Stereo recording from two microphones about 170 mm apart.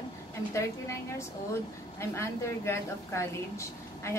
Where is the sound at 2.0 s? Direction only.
15° left (ahead or behind).